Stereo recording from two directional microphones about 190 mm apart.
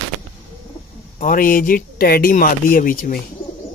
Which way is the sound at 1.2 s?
50° left (ahead or behind).